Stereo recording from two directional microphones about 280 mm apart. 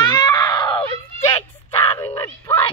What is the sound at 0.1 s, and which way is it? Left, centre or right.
Screaming, centre.